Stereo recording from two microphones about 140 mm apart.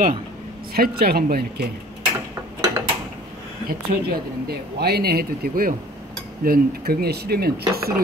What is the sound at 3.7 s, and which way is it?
Speech, 90° right.